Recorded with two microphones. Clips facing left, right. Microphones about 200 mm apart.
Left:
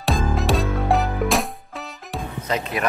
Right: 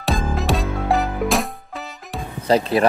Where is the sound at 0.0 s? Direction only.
Centre (ahead or behind).